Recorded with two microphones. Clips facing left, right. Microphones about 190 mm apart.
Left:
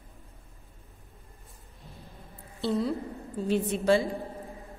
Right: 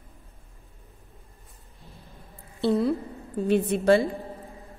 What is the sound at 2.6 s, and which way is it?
A woman's voice, 55° right (ahead or behind).